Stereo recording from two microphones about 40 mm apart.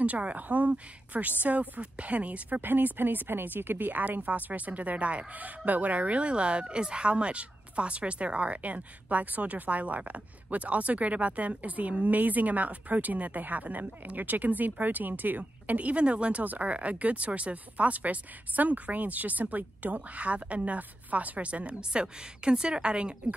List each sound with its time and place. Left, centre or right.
0.0 s speech: right
2.6 s speech: right
4.1 s speech: right